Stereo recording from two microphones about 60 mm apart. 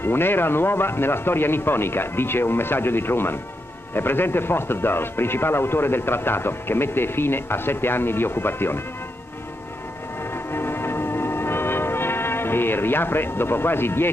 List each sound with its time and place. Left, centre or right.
0.0 s a man's voice: left
10.5 s music: left